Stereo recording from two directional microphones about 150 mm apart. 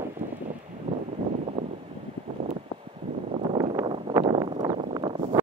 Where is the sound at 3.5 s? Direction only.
35° right (ahead or behind).